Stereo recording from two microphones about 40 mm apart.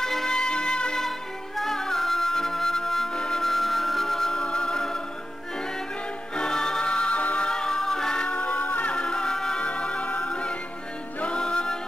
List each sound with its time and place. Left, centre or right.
0.0 s music: centre
1.6 s music: centre
6.3 s music: centre
7.2 s music: left
7.4 s music: centre
8.4 s music: left
8.9 s music: left
9.6 s music: left